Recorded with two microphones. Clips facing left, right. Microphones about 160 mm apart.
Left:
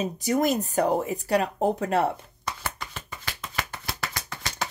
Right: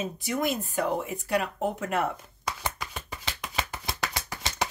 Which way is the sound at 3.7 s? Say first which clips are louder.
Right 1 dB; 20° right (ahead or behind).